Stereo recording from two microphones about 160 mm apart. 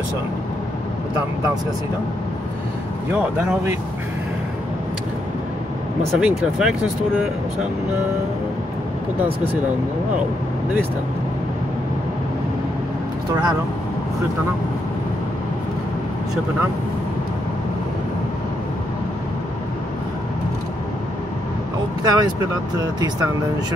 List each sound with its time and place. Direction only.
3.1 s speech: 10° right (ahead or behind)
6.1 s speech: 5° right (ahead or behind)
22.0 s speech: 25° right (ahead or behind)